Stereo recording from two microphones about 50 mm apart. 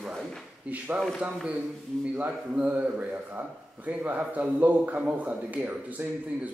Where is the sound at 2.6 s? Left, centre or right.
Right.